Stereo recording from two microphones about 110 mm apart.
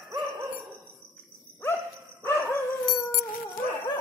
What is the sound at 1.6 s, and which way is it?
Dog, 25° left (ahead or behind).